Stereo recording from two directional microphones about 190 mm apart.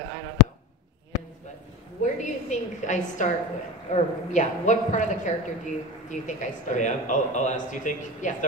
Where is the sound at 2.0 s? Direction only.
40° left (ahead or behind).